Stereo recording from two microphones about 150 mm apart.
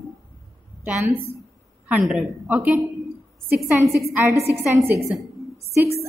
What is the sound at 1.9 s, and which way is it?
A woman's voice, 10° right (ahead or behind).